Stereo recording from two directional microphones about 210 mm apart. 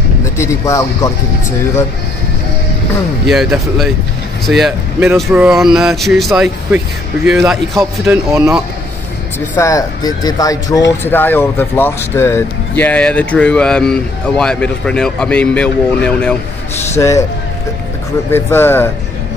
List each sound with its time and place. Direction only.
0.4 s speech: 15° left (ahead or behind)
3.3 s speech: centre (ahead or behind)
8.3 s speech: 15° right (ahead or behind)
9.6 s speech: 15° left (ahead or behind)
18.3 s speech: 10° left (ahead or behind)